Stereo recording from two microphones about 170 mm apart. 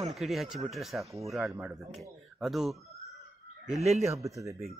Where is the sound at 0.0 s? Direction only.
Centre (ahead or behind).